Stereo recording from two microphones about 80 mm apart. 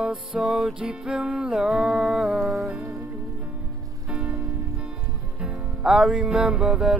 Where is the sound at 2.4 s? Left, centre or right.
Centre.